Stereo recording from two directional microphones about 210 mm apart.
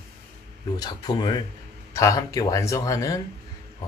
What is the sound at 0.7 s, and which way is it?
Speech, 20° left (ahead or behind).